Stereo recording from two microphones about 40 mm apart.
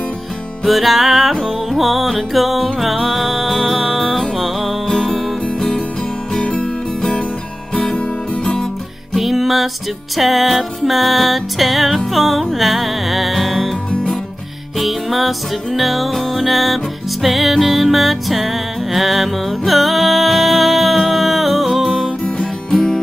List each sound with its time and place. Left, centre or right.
0.7 s music: centre
4.8 s music: centre
6.3 s music: left
7.0 s music: centre
9.1 s music: centre
14.8 s music: centre